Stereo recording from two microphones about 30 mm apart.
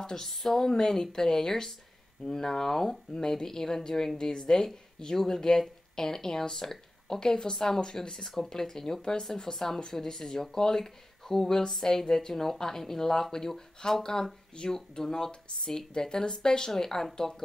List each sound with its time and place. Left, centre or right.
0.0 s speech: centre
0.3 s speech: centre
4.3 s speech: left
4.6 s speech: centre
13.8 s speech: left
14.7 s speech: left